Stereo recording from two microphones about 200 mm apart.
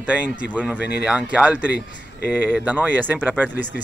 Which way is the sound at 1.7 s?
55° left (ahead or behind).